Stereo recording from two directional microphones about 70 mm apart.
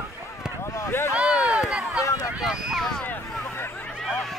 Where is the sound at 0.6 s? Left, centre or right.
Left.